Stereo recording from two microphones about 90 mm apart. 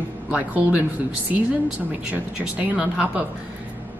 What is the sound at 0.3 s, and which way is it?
Speech, 15° right (ahead or behind).